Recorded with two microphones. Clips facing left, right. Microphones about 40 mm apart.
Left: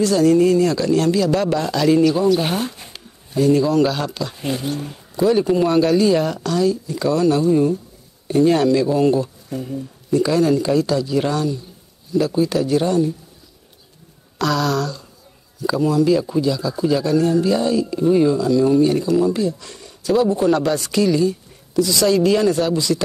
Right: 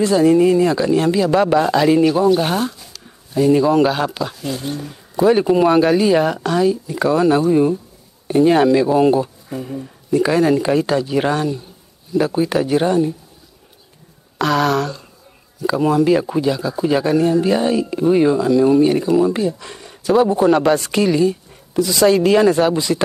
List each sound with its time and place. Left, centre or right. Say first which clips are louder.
0.0 s speech: right 2 dB; right
2.7 s a sound: left 2 dB; left
3.3 s speech: right 2 dB; centre
5.1 s speech: right 3 dB; right
10.1 s speech: right 2 dB; right
14.4 s speech: right 3 dB; right
20.4 s speech: right 4 dB; right